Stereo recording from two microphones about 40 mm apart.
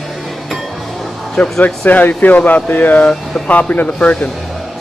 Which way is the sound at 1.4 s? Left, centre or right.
Left.